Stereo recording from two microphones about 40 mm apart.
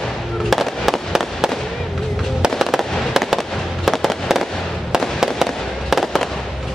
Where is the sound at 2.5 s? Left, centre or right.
Centre.